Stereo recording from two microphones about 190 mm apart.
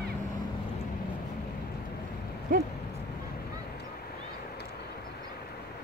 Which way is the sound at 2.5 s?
45° right (ahead or behind).